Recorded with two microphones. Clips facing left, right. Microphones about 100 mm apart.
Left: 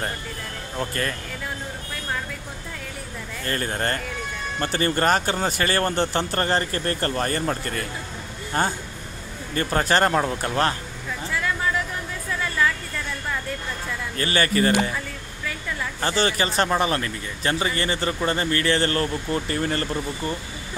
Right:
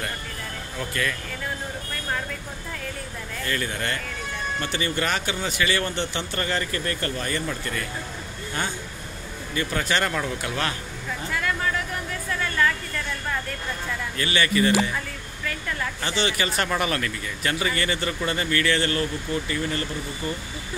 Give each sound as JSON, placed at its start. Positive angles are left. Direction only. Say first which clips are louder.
{"t": 0.7, "sound": "speech", "louder": "left 1 dB", "side_deg": 40}
{"t": 3.4, "sound": "speech", "louder": "left 3 dB", "side_deg": 40}
{"t": 14.1, "sound": "speech", "louder": "left 2 dB", "side_deg": 40}
{"t": 16.0, "sound": "speech", "louder": "left 5 dB", "side_deg": 40}